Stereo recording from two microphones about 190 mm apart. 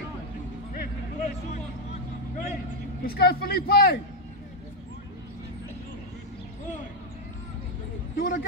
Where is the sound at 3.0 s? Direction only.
55° left (ahead or behind).